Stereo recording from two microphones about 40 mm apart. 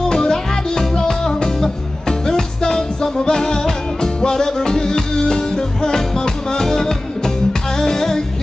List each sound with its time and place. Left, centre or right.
0.1 s music: centre